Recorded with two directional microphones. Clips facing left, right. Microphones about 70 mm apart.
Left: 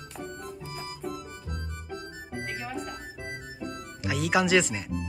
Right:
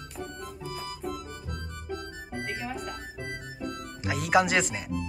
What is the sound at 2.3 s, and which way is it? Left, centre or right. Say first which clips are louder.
Music: even; centre.